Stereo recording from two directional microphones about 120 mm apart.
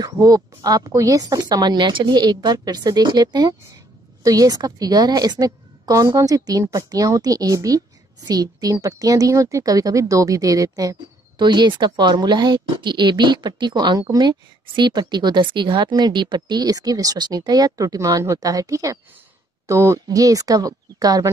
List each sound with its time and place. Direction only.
0.0 s speech: 30° right (ahead or behind)